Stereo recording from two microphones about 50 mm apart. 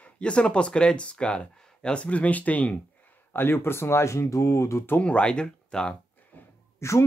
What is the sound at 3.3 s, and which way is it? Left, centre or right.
Speech, left.